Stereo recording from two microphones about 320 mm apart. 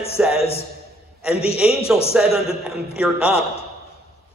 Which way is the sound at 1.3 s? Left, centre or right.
Centre.